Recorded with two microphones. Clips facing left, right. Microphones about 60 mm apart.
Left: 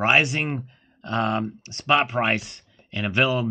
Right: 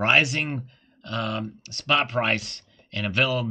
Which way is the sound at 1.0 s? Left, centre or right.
Left.